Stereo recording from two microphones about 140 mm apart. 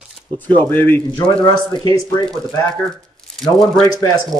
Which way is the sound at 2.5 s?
25° left (ahead or behind).